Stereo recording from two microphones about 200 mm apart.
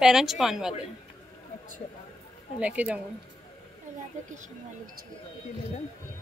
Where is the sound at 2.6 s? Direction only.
5° right (ahead or behind).